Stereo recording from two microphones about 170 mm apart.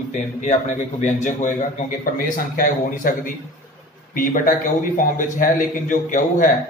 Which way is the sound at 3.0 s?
55° left (ahead or behind).